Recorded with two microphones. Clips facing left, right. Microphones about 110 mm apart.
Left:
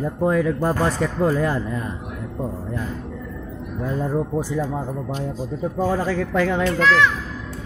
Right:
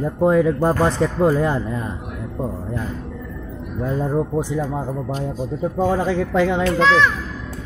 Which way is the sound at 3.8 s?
20° right (ahead or behind).